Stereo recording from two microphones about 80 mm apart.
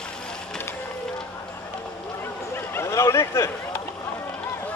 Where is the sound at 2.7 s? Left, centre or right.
Left.